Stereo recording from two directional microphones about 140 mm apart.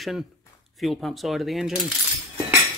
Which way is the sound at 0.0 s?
Centre (ahead or behind).